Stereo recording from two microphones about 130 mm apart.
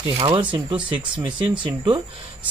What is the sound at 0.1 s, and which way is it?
Speech, 40° right (ahead or behind).